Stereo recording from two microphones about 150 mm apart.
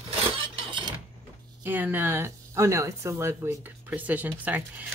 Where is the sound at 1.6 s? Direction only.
15° right (ahead or behind).